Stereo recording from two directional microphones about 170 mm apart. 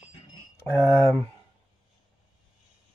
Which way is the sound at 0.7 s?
10° left (ahead or behind).